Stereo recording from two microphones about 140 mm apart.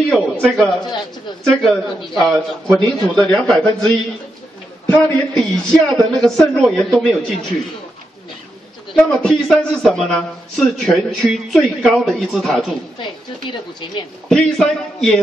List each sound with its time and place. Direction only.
0.1 s a man's voice: 5° left (ahead or behind)
8.9 s a man's voice: 5° left (ahead or behind)
13.0 s speech: 35° left (ahead or behind)
14.3 s a man's voice: 5° left (ahead or behind)